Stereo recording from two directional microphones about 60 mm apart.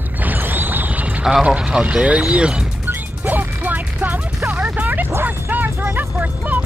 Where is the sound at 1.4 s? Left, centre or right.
Centre.